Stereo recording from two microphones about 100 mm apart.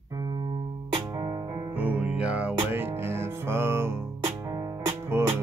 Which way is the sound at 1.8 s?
15° right (ahead or behind).